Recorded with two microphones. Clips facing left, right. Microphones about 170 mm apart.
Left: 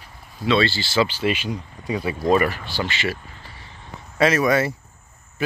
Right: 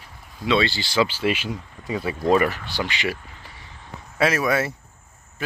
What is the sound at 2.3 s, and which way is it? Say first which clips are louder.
Speech: even; 20° right (ahead or behind).